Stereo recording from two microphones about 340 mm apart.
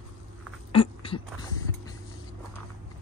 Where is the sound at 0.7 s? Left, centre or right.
Centre.